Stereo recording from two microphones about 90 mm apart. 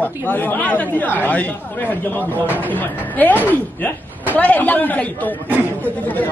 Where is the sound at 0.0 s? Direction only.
20° left (ahead or behind).